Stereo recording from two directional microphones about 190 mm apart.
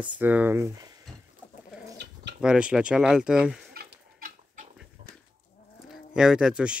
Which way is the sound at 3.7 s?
50° right (ahead or behind).